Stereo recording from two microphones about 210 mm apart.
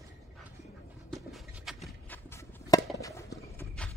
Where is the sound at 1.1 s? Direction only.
Centre (ahead or behind).